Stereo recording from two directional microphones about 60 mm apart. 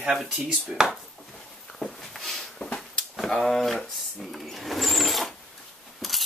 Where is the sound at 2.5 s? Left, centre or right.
Centre.